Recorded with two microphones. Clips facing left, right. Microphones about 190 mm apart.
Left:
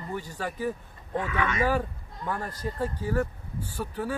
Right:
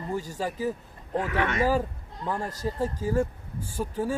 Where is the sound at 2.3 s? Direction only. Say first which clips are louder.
Right 4 dB; 25° right (ahead or behind).